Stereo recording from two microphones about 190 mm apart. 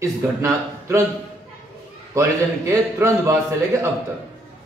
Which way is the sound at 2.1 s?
15° right (ahead or behind).